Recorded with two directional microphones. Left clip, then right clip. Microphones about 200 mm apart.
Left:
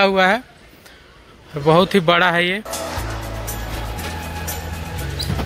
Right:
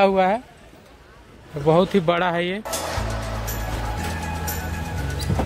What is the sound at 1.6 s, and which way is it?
Speech, centre (ahead or behind).